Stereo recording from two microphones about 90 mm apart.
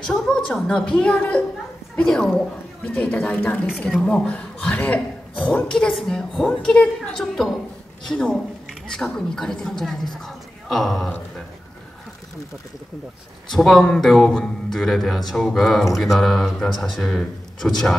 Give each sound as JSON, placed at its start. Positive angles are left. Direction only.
{"t": 0.0, "sound": "a man's voice", "side_deg": 5}
{"t": 3.8, "sound": "a man's voice", "side_deg": 5}
{"t": 13.5, "sound": "a man's voice", "side_deg": 5}